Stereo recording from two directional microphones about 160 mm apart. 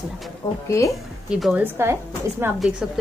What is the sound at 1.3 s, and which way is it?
Speech, 5° right (ahead or behind).